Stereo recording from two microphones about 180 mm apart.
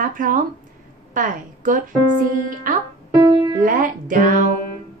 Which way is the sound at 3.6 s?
50° right (ahead or behind).